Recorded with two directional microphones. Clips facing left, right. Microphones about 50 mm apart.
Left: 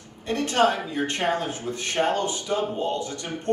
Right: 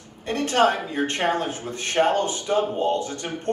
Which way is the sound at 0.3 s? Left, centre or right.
Right.